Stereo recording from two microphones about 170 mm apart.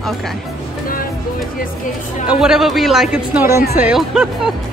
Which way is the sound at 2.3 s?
5° right (ahead or behind).